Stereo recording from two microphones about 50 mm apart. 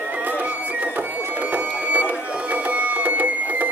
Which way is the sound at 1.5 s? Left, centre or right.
Right.